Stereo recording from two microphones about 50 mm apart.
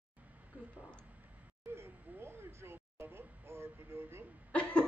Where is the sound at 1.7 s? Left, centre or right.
Right.